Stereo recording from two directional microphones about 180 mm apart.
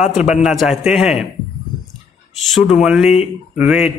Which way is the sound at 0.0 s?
40° left (ahead or behind).